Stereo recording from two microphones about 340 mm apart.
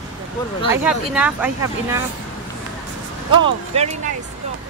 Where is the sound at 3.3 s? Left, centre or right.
Centre.